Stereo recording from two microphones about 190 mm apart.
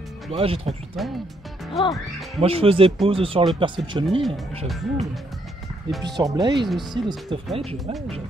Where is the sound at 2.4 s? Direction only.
30° right (ahead or behind).